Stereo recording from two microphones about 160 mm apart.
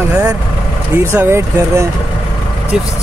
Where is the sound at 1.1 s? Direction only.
15° right (ahead or behind).